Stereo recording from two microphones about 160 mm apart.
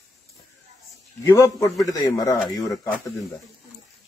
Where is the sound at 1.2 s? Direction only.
20° left (ahead or behind).